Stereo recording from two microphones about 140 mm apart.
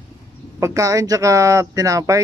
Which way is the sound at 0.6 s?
20° right (ahead or behind).